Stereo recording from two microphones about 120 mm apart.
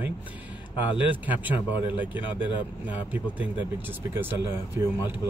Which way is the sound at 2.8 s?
15° right (ahead or behind).